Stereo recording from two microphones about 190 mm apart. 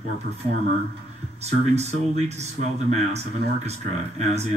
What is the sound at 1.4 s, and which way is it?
Speech, 35° right (ahead or behind).